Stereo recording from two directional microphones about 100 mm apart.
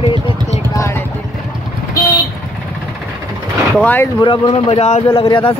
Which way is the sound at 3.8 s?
15° left (ahead or behind).